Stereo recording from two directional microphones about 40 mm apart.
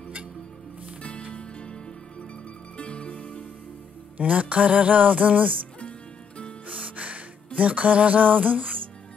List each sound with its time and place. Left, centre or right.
1.3 s music: left
2.8 s music: left
4.2 s music: right
5.8 s music: left
6.7 s music: right